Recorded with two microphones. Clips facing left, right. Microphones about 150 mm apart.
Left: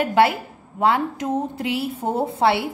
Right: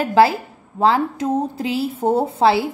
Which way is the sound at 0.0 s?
30° right (ahead or behind).